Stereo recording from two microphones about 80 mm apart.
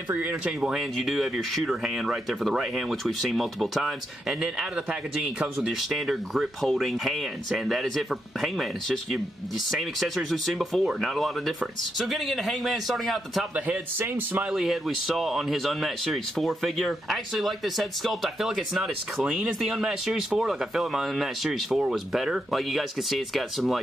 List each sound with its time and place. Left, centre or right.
0.1 s speech: right
0.5 s speech: centre
13.7 s speech: right
14.5 s speech: centre